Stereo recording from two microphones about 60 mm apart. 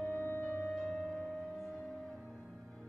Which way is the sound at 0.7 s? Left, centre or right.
Centre.